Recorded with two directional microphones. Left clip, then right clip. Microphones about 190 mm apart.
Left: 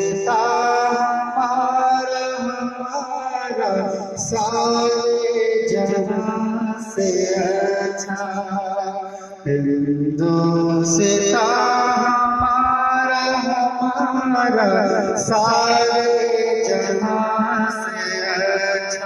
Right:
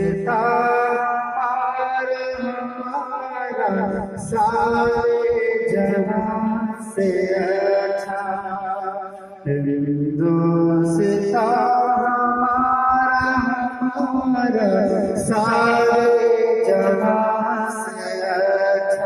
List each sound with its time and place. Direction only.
0.3 s music: 35° left (ahead or behind)
5.8 s mantra: 55° left (ahead or behind)
7.4 s music: 55° left (ahead or behind)
10.2 s music: 25° left (ahead or behind)
11.4 s music: 30° left (ahead or behind); by 14.1 s 10° left (ahead or behind)
14.3 s music: 20° right (ahead or behind)
18.3 s mantra: 40° right (ahead or behind)